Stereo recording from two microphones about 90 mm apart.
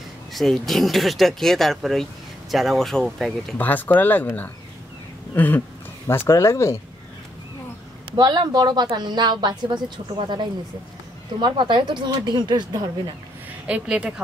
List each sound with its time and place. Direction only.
0.3 s speech: centre (ahead or behind)
3.5 s speech: 20° left (ahead or behind)
5.3 s a sound: 20° left (ahead or behind)
6.0 s speech: 30° left (ahead or behind)
8.2 s a woman's voice: 50° right (ahead or behind)
13.7 s a woman's voice: 15° right (ahead or behind)